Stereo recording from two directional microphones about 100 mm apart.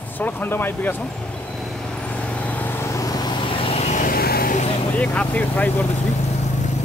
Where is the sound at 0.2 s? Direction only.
20° left (ahead or behind).